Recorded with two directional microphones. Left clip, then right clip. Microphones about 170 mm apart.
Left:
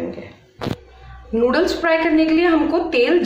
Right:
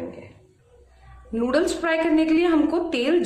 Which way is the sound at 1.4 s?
40° right (ahead or behind).